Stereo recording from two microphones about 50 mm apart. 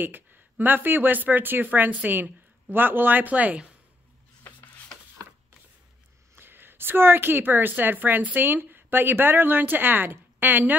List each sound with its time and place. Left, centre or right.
0.0 s speech: right
6.3 s a woman's voice: right